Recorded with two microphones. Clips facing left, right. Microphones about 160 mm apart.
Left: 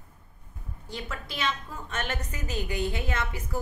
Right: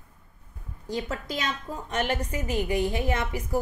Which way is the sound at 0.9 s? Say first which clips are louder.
Right 7 dB; 40° right (ahead or behind).